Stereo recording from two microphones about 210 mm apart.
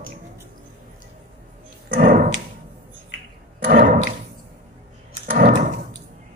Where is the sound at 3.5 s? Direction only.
40° right (ahead or behind).